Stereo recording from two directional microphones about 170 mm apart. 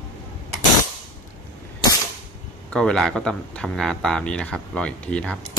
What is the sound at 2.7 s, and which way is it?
Speech, 5° left (ahead or behind).